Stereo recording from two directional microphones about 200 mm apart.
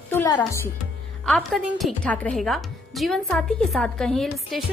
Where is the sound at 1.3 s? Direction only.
Centre (ahead or behind).